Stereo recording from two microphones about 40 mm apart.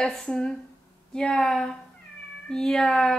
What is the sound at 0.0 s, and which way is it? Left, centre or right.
Speech, left.